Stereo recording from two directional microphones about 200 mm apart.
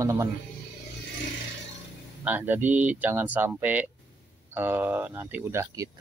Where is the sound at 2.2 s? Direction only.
10° right (ahead or behind).